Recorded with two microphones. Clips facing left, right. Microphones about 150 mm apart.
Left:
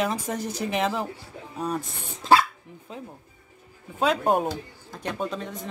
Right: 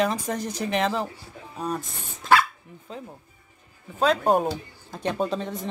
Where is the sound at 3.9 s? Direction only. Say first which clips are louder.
Right 2 dB; 10° left (ahead or behind).